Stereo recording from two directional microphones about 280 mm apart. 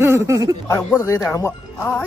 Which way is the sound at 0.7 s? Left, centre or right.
Centre.